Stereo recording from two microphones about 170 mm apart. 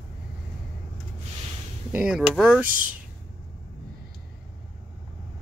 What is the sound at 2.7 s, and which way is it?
Speech, 55° right (ahead or behind).